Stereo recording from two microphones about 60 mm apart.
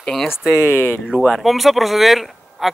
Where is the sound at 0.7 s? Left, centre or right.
Left.